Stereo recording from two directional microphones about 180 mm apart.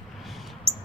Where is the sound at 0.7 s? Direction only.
35° right (ahead or behind).